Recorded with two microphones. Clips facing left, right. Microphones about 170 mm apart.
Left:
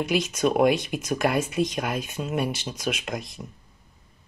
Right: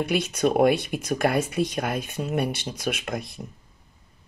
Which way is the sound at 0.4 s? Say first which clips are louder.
Right 1 dB; 50° right (ahead or behind).